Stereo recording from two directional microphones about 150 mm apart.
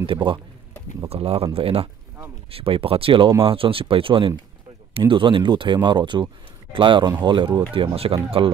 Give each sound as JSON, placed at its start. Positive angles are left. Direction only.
{"t": 0.0, "sound": "speech", "side_deg": -35}